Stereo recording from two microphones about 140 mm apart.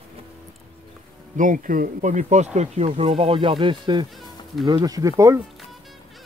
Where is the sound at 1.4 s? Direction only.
70° right (ahead or behind); by 5.4 s 25° right (ahead or behind).